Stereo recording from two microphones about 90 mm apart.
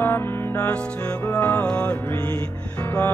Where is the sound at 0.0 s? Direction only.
25° left (ahead or behind).